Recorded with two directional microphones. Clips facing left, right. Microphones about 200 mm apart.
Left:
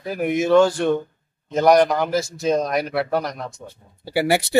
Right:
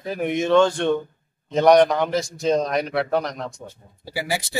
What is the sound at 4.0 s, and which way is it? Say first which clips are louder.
Speech: left 8 dB; 65° left (ahead or behind).